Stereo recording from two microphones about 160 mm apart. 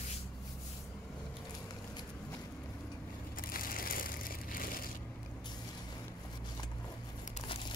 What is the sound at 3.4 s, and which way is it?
Crushing, 65° left (ahead or behind).